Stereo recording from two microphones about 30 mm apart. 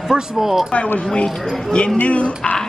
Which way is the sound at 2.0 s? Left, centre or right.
Left.